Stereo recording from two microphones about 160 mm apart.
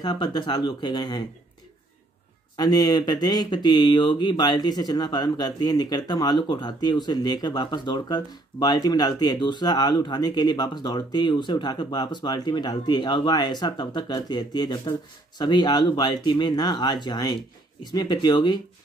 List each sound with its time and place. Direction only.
0.0 s speech: 25° left (ahead or behind)
2.5 s speech: 25° left (ahead or behind)